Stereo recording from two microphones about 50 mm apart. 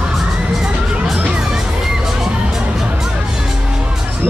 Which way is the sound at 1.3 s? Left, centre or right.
Centre.